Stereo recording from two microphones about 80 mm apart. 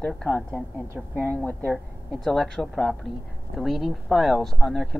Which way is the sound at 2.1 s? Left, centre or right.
Centre.